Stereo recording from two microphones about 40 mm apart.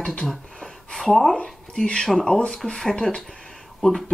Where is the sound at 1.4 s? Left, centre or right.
Centre.